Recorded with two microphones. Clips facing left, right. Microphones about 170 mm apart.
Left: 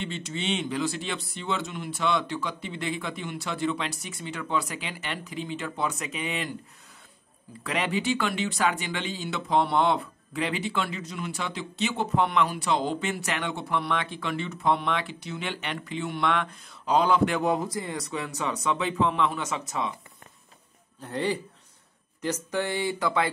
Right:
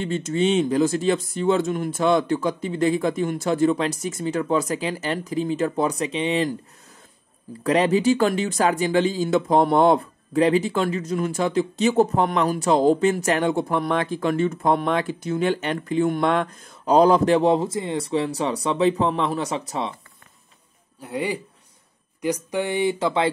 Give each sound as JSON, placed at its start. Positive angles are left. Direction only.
{"t": 0.0, "sound": "speech", "side_deg": -45}
{"t": 7.6, "sound": "speech", "side_deg": -40}
{"t": 21.0, "sound": "a man's voice", "side_deg": -10}